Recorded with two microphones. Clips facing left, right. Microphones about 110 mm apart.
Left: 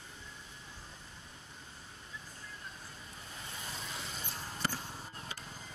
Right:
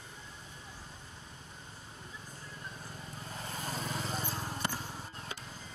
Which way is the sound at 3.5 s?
45° right (ahead or behind).